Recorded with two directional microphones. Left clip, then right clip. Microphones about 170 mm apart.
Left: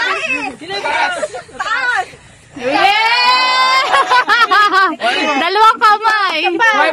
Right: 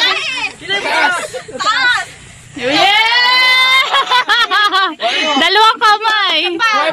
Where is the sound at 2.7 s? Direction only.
5° left (ahead or behind).